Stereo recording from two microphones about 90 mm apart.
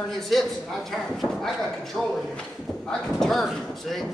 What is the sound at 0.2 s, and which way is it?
Speech, centre (ahead or behind).